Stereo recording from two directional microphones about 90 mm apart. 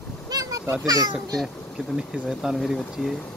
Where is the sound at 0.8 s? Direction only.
50° right (ahead or behind).